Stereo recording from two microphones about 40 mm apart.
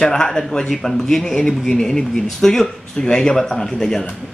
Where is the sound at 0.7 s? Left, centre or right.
Centre.